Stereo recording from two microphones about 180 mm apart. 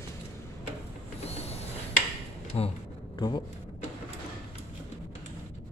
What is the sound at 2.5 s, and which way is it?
Speech, 35° left (ahead or behind).